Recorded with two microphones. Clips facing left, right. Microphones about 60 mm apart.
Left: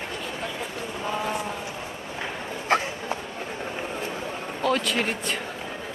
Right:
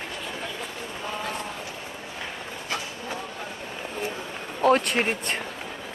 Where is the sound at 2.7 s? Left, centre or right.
Left.